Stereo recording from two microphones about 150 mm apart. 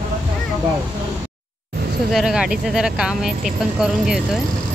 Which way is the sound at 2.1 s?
5° right (ahead or behind).